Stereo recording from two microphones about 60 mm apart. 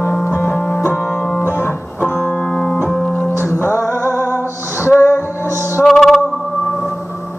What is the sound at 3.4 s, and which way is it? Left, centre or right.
Music, left.